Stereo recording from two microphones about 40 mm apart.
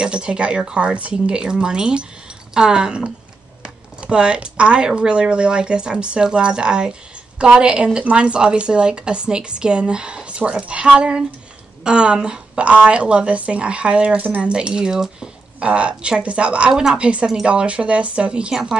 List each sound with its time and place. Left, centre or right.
0.0 s a woman's voice: right
12.6 s a woman's voice: right; by 15.2 s centre
15.6 s a woman's voice: right
18.5 s speech: centre